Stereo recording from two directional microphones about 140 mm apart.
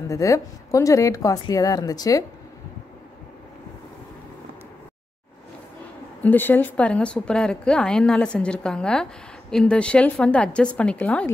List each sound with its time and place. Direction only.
0.1 s speech: 20° left (ahead or behind)
6.2 s a woman's voice: 15° left (ahead or behind)